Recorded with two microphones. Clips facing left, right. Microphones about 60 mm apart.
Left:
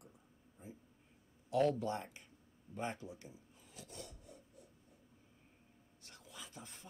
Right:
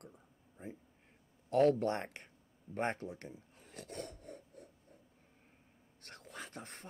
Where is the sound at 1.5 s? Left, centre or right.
Right.